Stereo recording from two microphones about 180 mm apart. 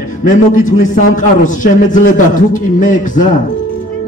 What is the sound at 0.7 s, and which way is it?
A man's voice, 45° left (ahead or behind).